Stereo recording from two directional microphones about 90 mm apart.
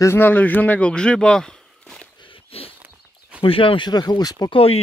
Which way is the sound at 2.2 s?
85° left.